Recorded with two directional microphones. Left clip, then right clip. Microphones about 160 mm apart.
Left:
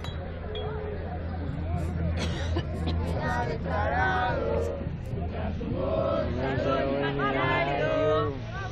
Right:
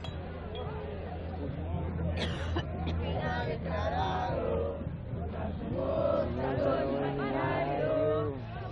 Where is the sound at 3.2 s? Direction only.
25° right (ahead or behind).